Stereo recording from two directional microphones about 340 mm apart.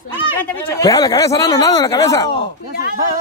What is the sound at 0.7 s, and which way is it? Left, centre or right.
Speech, centre.